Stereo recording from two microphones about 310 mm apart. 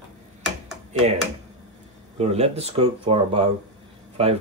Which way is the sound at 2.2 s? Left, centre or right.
Centre.